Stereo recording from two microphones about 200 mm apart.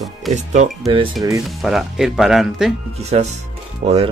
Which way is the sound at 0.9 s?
20° right (ahead or behind).